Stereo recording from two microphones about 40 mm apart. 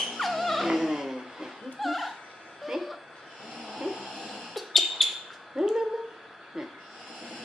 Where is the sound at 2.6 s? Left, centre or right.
Centre.